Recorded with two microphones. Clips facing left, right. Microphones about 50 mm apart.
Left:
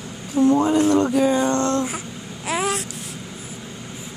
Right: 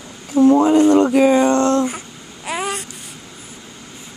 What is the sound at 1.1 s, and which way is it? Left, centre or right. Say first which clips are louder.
Speech: right 5 dB; right.